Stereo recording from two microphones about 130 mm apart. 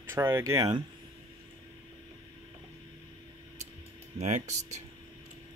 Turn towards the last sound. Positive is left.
turn(degrees=-65)  # may be behind; listen again after turning